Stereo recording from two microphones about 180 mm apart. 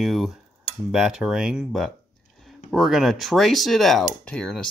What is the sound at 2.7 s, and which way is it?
Speech, centre (ahead or behind).